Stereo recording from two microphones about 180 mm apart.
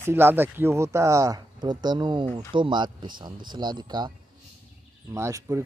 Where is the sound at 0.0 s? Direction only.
10° right (ahead or behind).